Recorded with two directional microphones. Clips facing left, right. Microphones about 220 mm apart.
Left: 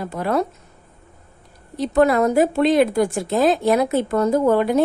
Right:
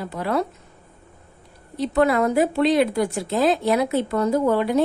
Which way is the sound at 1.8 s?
40° left (ahead or behind).